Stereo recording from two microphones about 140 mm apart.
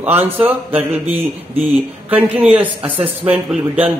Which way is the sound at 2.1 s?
10° right (ahead or behind).